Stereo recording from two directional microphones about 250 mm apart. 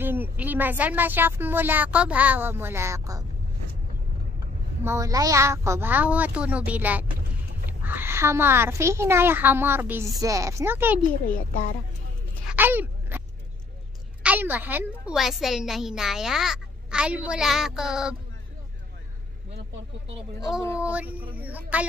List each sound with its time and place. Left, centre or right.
0.0 s a woman's voice: centre
4.8 s a woman's voice: centre
11.2 s a child's voice: left
12.4 s a sound: centre
14.2 s a woman's voice: centre
20.8 s a woman's voice: centre